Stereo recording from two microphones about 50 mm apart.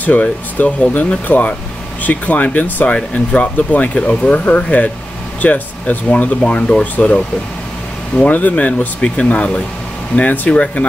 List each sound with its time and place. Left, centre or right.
0.0 s speech: left
8.3 s speech: left